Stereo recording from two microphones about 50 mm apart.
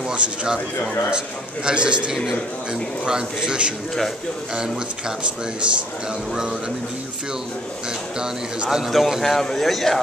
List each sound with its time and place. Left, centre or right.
0.1 s a man's voice: right
8.6 s a man's voice: centre